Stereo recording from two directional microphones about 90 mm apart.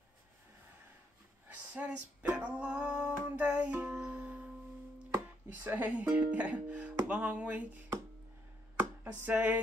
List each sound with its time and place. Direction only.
1.7 s music: 15° right (ahead or behind)
5.1 s speech: 25° right (ahead or behind)
9.2 s a sound: 20° right (ahead or behind)